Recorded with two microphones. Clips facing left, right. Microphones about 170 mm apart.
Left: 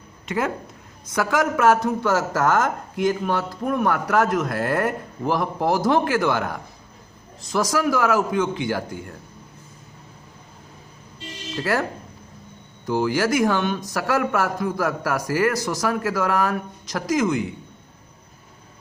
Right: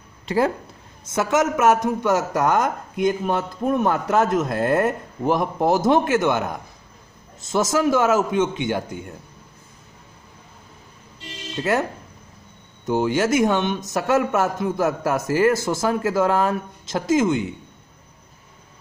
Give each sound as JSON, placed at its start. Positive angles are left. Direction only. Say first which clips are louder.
{"t": 0.3, "sound": "a man's voice", "louder": "right 4 dB", "side_deg": -30}
{"t": 11.5, "sound": "a man's voice", "louder": "right 2 dB", "side_deg": -20}